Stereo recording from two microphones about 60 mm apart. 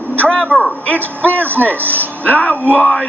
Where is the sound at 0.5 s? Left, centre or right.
Right.